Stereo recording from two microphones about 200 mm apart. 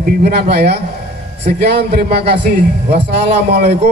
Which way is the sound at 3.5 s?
55° right (ahead or behind).